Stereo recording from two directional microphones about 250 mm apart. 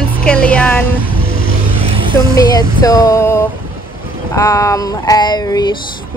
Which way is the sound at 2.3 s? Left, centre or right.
Centre.